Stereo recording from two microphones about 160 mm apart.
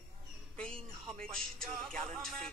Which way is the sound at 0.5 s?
5° left (ahead or behind).